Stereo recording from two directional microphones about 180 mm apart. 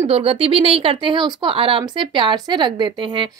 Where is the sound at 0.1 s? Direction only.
30° right (ahead or behind).